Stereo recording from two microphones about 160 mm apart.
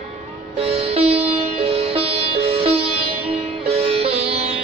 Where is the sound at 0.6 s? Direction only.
40° right (ahead or behind).